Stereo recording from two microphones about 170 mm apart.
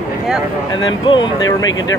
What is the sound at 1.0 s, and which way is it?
Speech, 25° left (ahead or behind).